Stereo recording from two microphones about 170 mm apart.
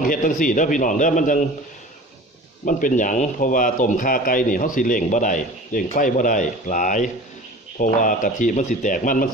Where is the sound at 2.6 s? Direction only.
50° left (ahead or behind).